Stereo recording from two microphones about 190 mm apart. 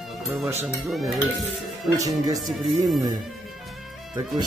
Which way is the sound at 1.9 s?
20° right (ahead or behind).